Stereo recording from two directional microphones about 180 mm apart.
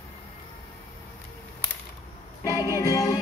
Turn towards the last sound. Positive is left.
turn(degrees=20)  # may be behind; listen again after turning